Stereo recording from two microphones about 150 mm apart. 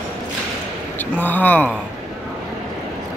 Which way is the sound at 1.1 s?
10° left (ahead or behind).